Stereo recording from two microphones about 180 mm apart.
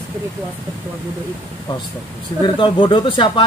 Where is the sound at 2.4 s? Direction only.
25° left (ahead or behind).